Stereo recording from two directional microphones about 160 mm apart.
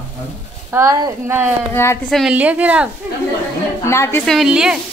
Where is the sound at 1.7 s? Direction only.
15° left (ahead or behind).